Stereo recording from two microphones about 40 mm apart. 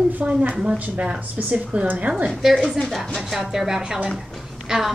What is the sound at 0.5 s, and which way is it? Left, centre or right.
Speech, right.